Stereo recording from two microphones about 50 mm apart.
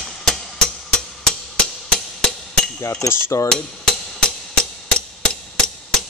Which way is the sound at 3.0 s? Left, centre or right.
Left.